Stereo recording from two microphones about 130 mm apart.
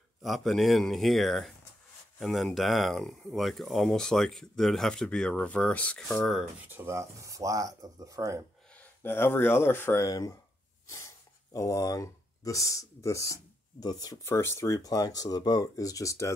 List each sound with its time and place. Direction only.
0.2 s speech: centre (ahead or behind)
6.6 s speech: 15° right (ahead or behind)
8.7 s speech: 15° left (ahead or behind)
11.5 s speech: 25° left (ahead or behind)